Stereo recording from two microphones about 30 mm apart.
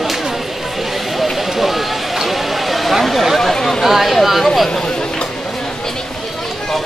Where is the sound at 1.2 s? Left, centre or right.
Centre.